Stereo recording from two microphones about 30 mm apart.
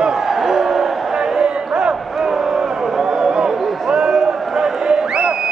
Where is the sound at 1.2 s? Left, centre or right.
Right.